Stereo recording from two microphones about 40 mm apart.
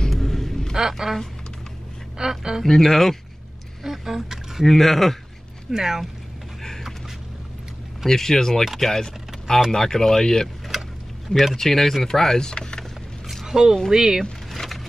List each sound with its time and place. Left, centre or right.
0.1 s rumble: centre
0.9 s chopping: centre
2.1 s a woman's voice: centre
2.6 s speech: centre
3.8 s speech: centre
4.6 s speech: centre
5.7 s a woman's voice: centre
8.1 s speech: centre
8.6 s chopping: centre
8.9 s a sound: centre
9.7 s speech: centre
11.5 s speech: centre
13.5 s a woman's voice: centre